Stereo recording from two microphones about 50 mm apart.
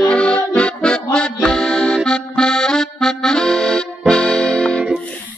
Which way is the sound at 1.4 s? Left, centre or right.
Centre.